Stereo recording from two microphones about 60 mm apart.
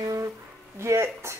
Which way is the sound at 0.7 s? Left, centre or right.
Right.